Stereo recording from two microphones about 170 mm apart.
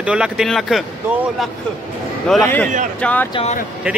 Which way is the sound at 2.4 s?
10° left (ahead or behind).